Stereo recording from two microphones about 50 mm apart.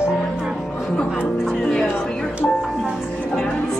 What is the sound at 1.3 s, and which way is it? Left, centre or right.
Music, centre.